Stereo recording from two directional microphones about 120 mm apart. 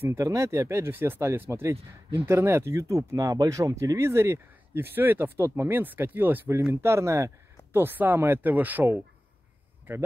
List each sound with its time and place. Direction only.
0.1 s speech: 25° right (ahead or behind)